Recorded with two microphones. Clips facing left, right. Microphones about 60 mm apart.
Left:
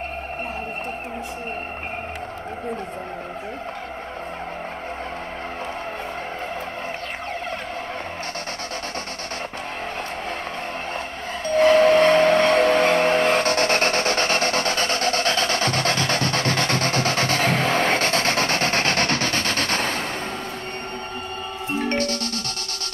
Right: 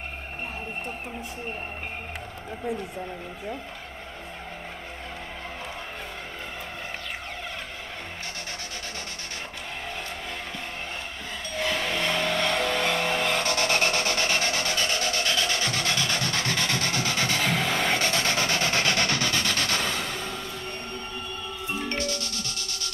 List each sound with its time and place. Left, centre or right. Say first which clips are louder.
11.4 s train: left 14 dB; left
21.7 s music: left 7 dB; left